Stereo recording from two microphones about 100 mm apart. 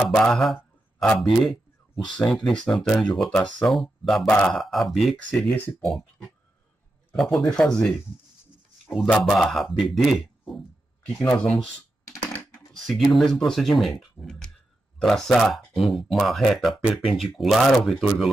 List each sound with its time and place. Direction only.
0.0 s speech: 5° left (ahead or behind)
2.0 s speech: 5° left (ahead or behind)
8.9 s speech: centre (ahead or behind)
11.1 s speech: 15° left (ahead or behind)
12.8 s speech: centre (ahead or behind)